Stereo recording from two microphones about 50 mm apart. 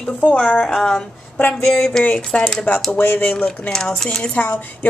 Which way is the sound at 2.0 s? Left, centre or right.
Left.